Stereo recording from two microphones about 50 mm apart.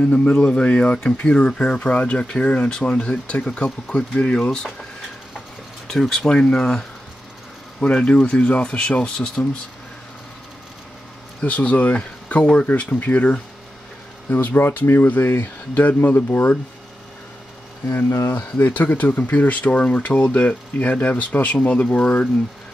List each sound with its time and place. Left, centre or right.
0.1 s speech: centre
5.9 s speech: centre
6.2 s speech: centre
7.8 s speech: left
11.4 s speech: left
14.3 s speech: left
18.3 s speech: left